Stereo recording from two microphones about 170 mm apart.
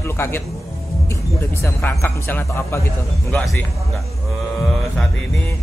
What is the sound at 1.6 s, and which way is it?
Speech, 15° left (ahead or behind).